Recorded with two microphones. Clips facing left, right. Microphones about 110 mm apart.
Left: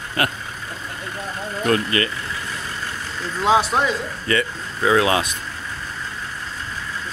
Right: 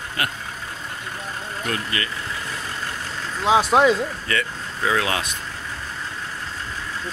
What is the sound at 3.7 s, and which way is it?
Speech, 70° right (ahead or behind).